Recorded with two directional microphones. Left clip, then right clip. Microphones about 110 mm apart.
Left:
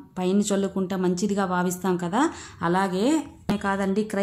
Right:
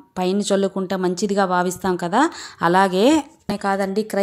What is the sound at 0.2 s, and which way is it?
A woman's voice, 50° right (ahead or behind).